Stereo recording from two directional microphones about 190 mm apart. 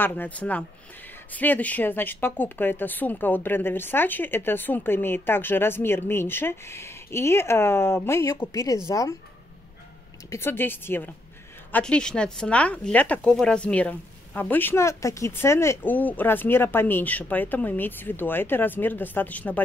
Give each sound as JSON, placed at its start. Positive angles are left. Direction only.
{"t": 0.0, "sound": "speech", "side_deg": 10}
{"t": 10.3, "sound": "speech", "side_deg": 10}